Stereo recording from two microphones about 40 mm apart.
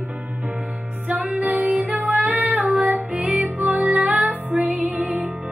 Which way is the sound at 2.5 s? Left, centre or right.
Right.